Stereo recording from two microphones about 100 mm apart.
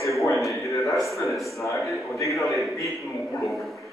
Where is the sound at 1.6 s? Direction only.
30° left (ahead or behind).